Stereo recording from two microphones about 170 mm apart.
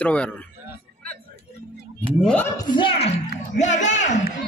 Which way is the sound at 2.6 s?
30° left (ahead or behind).